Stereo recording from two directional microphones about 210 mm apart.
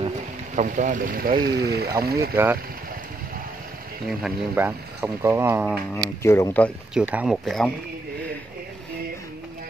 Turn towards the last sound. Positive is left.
turn(degrees=0)  # may be behind; listen again after turning